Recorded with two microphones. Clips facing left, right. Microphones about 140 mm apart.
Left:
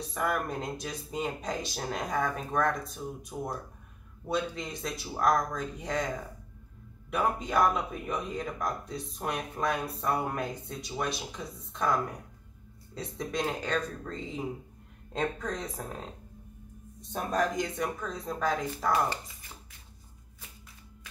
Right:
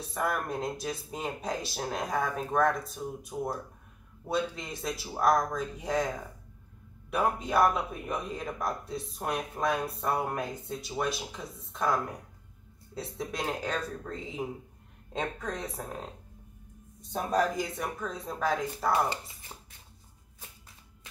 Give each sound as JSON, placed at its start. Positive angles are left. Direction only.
{"t": 0.0, "sound": "a man's voice", "side_deg": 0}
{"t": 7.1, "sound": "a man's voice", "side_deg": -5}
{"t": 17.1, "sound": "a man's voice", "side_deg": -5}